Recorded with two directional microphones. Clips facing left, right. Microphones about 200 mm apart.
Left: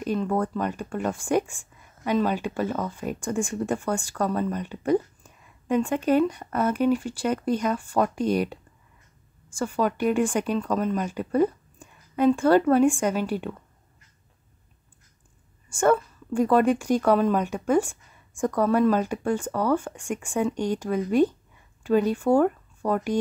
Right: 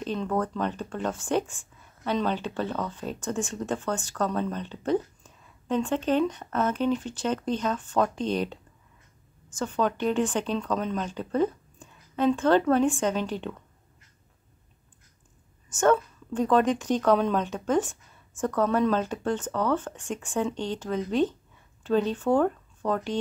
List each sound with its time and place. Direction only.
0.0 s speech: 10° left (ahead or behind)
15.7 s speech: 10° left (ahead or behind)